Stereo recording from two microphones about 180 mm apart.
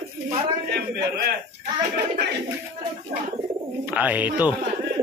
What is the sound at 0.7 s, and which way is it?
Speech, 60° right (ahead or behind).